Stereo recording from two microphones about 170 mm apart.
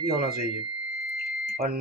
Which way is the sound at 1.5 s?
65° right (ahead or behind).